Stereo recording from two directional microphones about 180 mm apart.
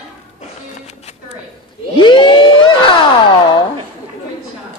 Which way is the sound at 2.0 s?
25° left (ahead or behind).